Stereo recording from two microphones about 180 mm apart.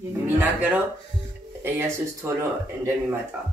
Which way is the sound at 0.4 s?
10° right (ahead or behind).